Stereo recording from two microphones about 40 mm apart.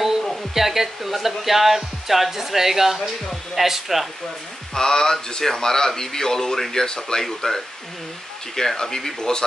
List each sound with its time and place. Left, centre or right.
0.2 s a sound: centre
0.6 s speech: centre
4.7 s speech: centre